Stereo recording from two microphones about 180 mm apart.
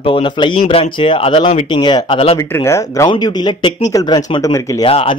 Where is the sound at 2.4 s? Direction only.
15° left (ahead or behind).